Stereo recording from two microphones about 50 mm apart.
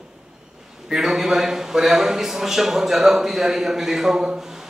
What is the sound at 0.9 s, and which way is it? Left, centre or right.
A man's voice, centre.